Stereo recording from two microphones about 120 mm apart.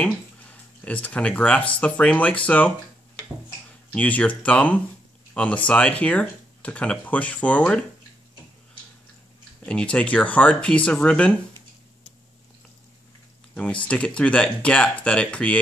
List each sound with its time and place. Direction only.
0.0 s speech: 10° left (ahead or behind)
3.9 s speech: 10° left (ahead or behind)
9.7 s speech: 10° left (ahead or behind)
13.8 s speech: 10° left (ahead or behind)